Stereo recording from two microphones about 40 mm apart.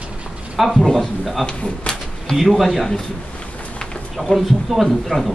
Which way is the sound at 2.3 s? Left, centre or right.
Centre.